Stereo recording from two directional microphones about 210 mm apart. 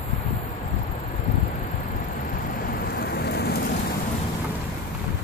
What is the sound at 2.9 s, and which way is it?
Rain, 45° left (ahead or behind).